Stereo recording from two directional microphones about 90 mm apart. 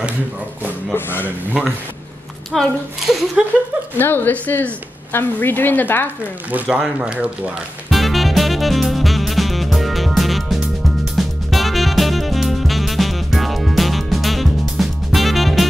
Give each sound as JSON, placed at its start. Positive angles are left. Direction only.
{"t": 0.9, "sound": "a woman's voice", "side_deg": 25}
{"t": 1.6, "sound": "a woman's voice", "side_deg": -10}
{"t": 4.0, "sound": "a woman's voice", "side_deg": 20}
{"t": 6.5, "sound": "speech", "side_deg": -15}
{"t": 7.9, "sound": "music", "side_deg": 0}